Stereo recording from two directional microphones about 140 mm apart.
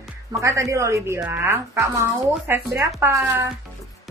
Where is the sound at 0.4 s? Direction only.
20° right (ahead or behind).